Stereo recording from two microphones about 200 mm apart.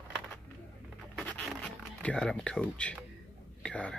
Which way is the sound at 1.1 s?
10° left (ahead or behind).